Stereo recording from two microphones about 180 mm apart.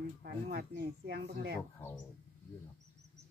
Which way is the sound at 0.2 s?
65° right (ahead or behind).